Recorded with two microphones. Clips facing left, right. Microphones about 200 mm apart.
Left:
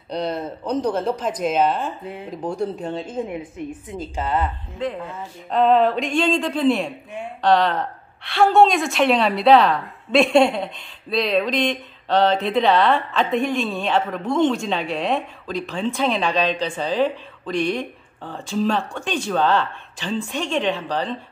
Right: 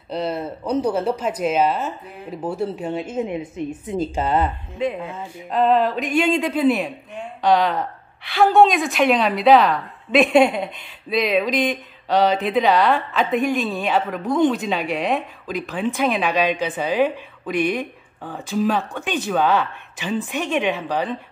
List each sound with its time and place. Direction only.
0.1 s speech: 5° right (ahead or behind)
3.3 s a woman's voice: 25° right (ahead or behind)
5.5 s a woman's voice: centre (ahead or behind)
18.9 s a woman's voice: 5° right (ahead or behind)